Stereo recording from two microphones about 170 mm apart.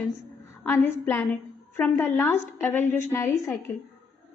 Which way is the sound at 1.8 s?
15° left (ahead or behind).